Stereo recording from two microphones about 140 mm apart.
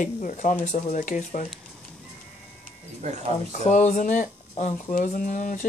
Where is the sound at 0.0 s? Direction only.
65° left (ahead or behind).